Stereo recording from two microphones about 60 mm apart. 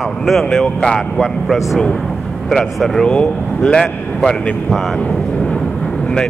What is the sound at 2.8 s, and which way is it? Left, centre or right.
Speech, centre.